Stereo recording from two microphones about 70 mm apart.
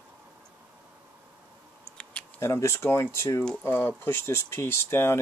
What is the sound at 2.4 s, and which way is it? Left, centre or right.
Speech, left.